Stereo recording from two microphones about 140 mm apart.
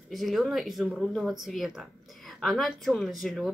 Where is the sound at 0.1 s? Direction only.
Centre (ahead or behind).